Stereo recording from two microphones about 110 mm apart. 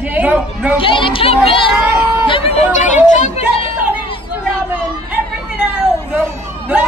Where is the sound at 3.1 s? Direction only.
90° left.